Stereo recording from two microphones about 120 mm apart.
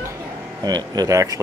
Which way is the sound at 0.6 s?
35° right (ahead or behind).